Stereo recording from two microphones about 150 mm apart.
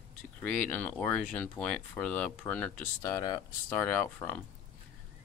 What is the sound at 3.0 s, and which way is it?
Speech, 25° left (ahead or behind).